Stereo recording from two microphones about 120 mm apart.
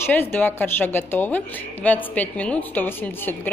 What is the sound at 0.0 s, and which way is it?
A woman's voice, 15° left (ahead or behind).